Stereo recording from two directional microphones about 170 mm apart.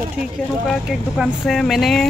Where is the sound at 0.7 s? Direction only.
Centre (ahead or behind).